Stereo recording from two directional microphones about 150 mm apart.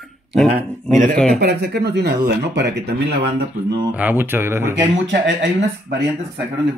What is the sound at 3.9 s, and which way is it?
Speech, 10° right (ahead or behind).